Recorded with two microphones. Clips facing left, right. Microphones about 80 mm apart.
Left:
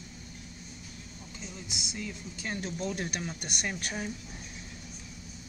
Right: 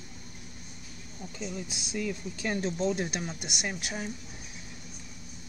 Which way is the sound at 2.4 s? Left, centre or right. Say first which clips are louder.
Right 6 dB; right.